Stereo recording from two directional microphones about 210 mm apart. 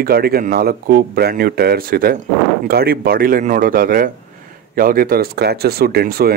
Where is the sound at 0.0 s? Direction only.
45° right (ahead or behind).